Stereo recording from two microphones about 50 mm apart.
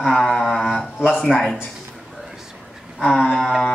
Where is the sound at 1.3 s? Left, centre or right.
Centre.